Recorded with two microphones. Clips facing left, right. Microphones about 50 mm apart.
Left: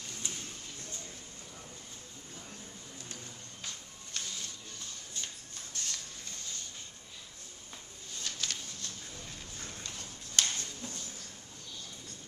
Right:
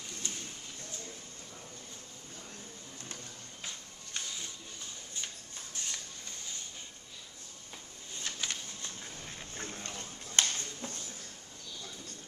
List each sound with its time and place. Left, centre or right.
3.6 s music: centre
5.7 s printer: centre
8.2 s a sound: right